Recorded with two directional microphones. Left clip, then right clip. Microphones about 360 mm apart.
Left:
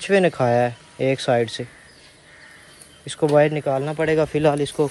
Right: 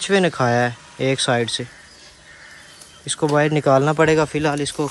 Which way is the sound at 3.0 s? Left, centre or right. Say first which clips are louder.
Left 2 dB; centre.